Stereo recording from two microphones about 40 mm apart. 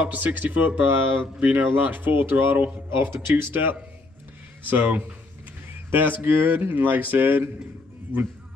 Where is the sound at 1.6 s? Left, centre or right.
Right.